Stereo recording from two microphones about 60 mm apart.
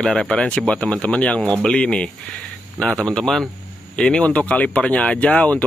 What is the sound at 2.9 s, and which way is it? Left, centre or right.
Speech, centre.